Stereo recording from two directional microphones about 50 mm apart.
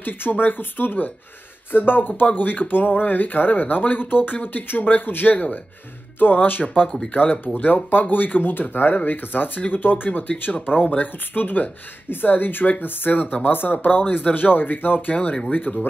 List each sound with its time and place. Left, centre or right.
0.0 s speech: left